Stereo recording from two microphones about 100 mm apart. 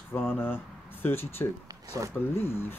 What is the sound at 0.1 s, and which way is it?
Speech, 25° left (ahead or behind).